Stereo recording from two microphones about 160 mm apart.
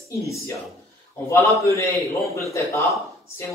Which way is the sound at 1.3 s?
15° left (ahead or behind).